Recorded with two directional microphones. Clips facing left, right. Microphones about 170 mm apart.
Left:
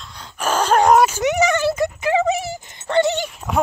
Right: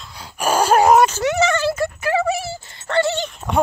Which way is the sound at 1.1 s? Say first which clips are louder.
Even; 15° left (ahead or behind).